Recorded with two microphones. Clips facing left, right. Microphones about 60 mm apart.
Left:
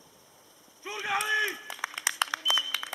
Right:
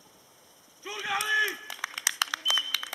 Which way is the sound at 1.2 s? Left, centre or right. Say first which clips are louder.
Right 3 dB; centre.